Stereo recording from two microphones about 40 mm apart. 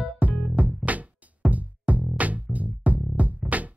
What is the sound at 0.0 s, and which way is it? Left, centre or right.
Music, right.